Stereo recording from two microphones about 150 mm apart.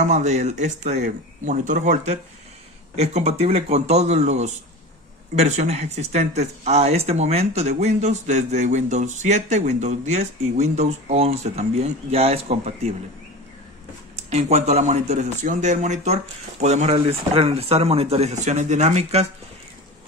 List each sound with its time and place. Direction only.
0.0 s speech: 50° right (ahead or behind)
3.0 s speech: 45° right (ahead or behind)
14.1 s speech: 50° right (ahead or behind)